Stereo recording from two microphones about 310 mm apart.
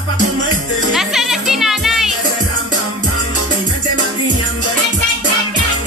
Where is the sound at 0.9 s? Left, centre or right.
Centre.